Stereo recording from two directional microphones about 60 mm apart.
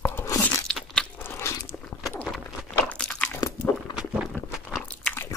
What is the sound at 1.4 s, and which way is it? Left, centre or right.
Biting, left.